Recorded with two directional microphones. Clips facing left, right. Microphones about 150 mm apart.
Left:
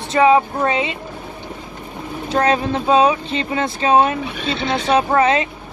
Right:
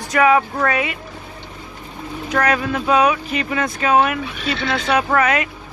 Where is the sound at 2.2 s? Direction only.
25° left (ahead or behind).